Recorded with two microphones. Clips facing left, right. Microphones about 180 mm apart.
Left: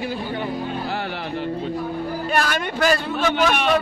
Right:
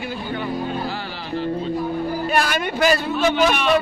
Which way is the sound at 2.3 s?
10° right (ahead or behind).